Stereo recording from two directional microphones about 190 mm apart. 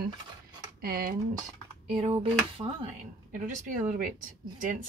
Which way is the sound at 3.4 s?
45° right (ahead or behind).